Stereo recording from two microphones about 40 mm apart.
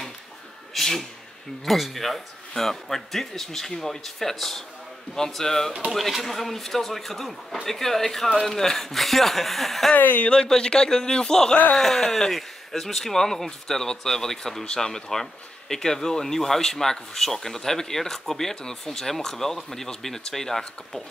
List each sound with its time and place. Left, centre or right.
0.7 s a sound: centre
1.7 s speech: centre
5.9 s speech: centre
9.9 s speech: left
10.5 s speech: centre